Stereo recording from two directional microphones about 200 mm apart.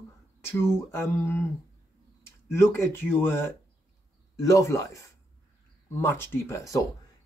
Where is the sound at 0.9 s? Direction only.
10° left (ahead or behind).